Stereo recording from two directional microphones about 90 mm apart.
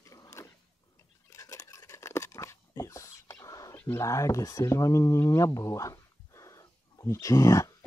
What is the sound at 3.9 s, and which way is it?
Speech, 35° left (ahead or behind).